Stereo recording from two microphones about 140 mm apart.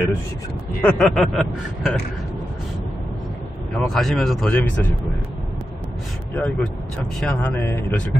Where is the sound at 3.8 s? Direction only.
Centre (ahead or behind).